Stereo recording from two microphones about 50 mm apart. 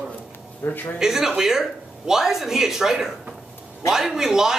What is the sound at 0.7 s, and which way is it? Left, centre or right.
Speech, left.